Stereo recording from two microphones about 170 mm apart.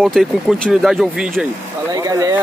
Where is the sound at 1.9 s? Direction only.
20° right (ahead or behind).